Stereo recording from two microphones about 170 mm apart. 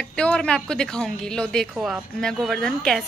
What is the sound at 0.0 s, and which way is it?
Speech, 5° left (ahead or behind).